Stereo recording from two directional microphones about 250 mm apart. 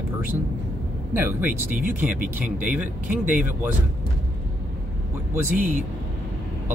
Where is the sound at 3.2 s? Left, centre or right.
Centre.